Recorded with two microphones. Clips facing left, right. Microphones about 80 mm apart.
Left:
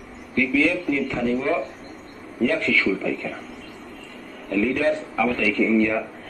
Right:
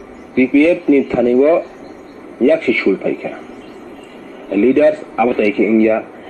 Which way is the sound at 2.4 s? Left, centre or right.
Right.